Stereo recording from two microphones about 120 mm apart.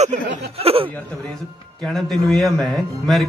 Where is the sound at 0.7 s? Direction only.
55° right (ahead or behind).